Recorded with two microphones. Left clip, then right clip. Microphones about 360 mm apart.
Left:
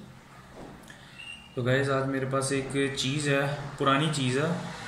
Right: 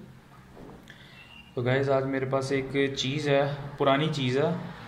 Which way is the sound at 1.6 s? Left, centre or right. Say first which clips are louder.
Right 1 dB; centre.